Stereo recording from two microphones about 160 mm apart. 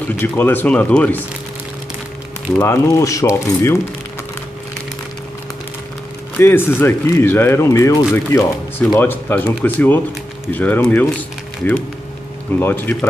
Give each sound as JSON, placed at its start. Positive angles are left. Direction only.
{"t": 0.2, "sound": "speech", "side_deg": 15}
{"t": 2.5, "sound": "speech", "side_deg": 15}
{"t": 6.3, "sound": "speech", "side_deg": 15}
{"t": 12.5, "sound": "speech", "side_deg": 10}